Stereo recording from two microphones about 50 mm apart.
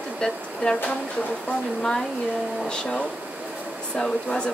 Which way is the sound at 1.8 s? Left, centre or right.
Centre.